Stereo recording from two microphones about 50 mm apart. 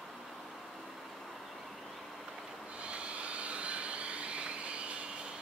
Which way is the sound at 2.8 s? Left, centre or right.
Right.